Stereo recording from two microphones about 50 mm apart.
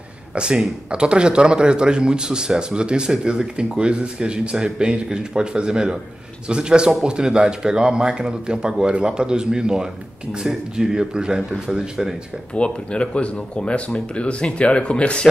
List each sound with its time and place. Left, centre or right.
0.3 s a man's voice: centre
12.5 s speech: left